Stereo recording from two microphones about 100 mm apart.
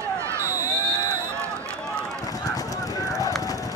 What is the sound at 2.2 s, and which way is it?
Run, 35° left (ahead or behind).